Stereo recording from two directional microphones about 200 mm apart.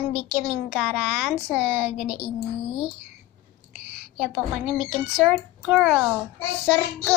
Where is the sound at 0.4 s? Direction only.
Centre (ahead or behind).